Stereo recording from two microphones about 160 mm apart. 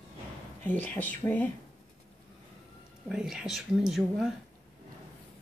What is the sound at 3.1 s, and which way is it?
Speech, 5° right (ahead or behind).